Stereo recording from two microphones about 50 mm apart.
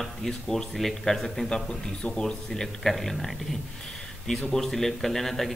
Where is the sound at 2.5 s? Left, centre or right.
Centre.